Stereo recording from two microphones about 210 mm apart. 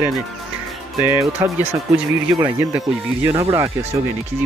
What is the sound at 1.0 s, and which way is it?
Speech, 10° right (ahead or behind).